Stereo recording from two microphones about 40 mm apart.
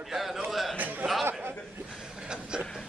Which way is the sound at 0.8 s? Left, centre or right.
Right.